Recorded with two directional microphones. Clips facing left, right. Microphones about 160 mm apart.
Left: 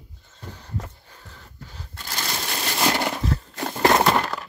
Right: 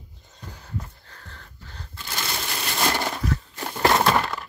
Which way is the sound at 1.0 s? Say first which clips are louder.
Even; 10° left (ahead or behind).